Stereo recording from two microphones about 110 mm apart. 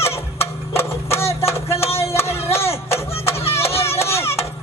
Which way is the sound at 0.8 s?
25° left (ahead or behind).